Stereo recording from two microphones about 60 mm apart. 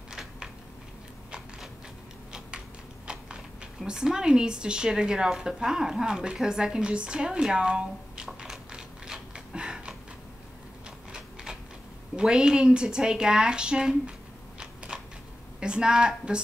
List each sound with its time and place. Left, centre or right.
0.1 s a sound: centre
3.1 s a sound: centre
3.8 s speech: centre
11.1 s typewriter: centre
12.2 s speech: centre
14.9 s scissors: centre
15.6 s speech: centre